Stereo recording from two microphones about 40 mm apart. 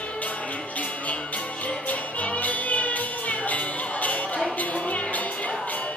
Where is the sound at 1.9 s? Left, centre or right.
Left.